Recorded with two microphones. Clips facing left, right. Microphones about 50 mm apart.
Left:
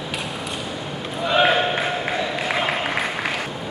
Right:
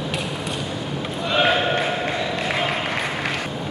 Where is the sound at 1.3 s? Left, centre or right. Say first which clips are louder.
Left 1 dB; centre.